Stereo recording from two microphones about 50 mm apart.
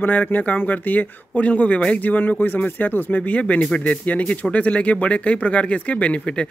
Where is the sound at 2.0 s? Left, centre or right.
Left.